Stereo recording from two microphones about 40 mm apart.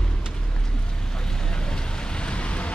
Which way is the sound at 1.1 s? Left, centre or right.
Centre.